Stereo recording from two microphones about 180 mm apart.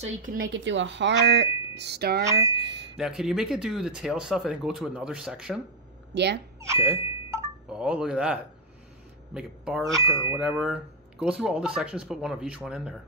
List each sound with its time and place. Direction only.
0.0 s speech: 50° right (ahead or behind)
0.5 s speech: 90° right; by 2.2 s 60° right (ahead or behind)
2.5 s a sound: 70° right (ahead or behind)
3.0 s speech: centre (ahead or behind)
6.1 s speech: 70° right (ahead or behind)
6.7 s doorbell: 15° right (ahead or behind)
7.6 s speech: 5° right (ahead or behind)
9.9 s speech: 20° right (ahead or behind)
10.3 s speech: 5° right (ahead or behind)